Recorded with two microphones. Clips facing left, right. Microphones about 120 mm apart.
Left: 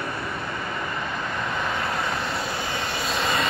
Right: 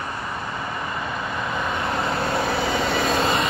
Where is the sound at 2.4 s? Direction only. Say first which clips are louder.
Right 6 dB; 80° right.